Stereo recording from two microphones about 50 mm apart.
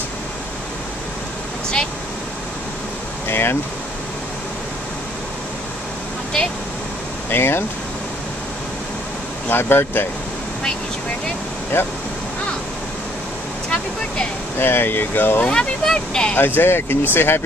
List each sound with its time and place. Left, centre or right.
3.3 s speech: left
7.2 s speech: left
9.5 s speech: left
11.7 s speech: left
14.6 s speech: left
15.4 s speech: left
16.3 s speech: left